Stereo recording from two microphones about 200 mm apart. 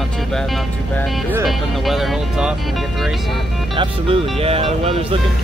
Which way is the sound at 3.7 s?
25° right (ahead or behind).